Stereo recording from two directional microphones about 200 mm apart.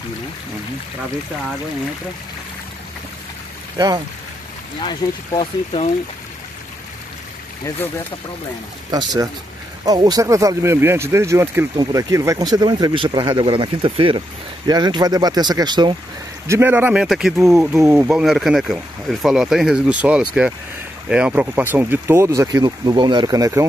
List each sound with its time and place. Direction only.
3.7 s speech: 20° right (ahead or behind)
4.7 s speech: 20° left (ahead or behind)
9.8 s speech: 20° right (ahead or behind)